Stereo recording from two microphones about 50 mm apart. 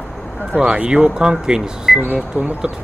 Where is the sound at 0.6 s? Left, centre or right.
Centre.